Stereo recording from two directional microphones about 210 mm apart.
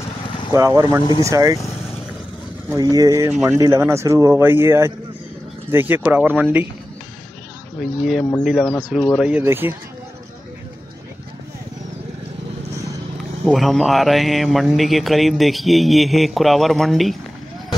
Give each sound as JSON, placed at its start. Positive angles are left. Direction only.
{"t": 0.5, "sound": "a man's voice", "side_deg": -15}
{"t": 2.7, "sound": "a man's voice", "side_deg": -15}
{"t": 7.8, "sound": "a man's voice", "side_deg": 0}
{"t": 13.2, "sound": "a man's voice", "side_deg": 0}